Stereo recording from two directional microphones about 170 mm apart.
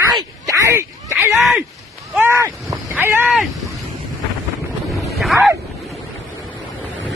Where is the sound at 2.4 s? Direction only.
20° right (ahead or behind).